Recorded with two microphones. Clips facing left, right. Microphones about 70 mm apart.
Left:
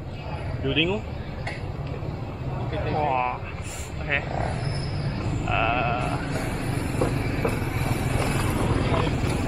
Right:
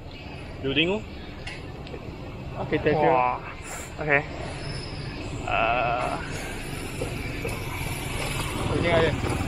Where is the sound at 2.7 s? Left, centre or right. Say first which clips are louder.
Right 5 dB; right.